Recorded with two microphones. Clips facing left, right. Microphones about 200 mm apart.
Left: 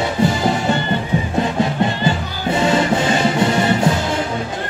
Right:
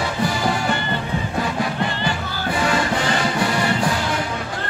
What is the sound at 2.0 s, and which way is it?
Music, 25° left (ahead or behind).